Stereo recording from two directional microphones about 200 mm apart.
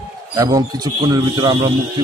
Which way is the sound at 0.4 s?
20° right (ahead or behind).